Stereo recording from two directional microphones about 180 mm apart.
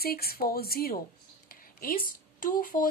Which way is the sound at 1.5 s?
55° left (ahead or behind).